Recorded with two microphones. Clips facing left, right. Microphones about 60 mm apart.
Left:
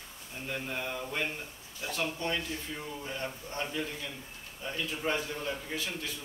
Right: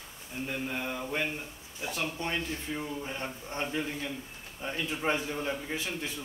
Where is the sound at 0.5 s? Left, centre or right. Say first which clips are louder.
Even; centre.